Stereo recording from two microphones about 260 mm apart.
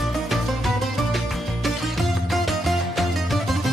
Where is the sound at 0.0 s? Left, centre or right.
Centre.